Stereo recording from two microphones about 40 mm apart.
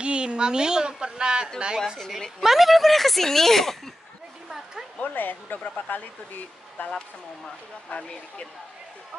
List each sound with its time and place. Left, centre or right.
0.0 s a woman's voice: right
2.4 s speech: centre
4.9 s speech: left
7.9 s speech: left